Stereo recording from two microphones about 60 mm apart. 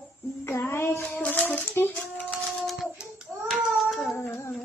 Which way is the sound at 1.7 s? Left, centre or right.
Left.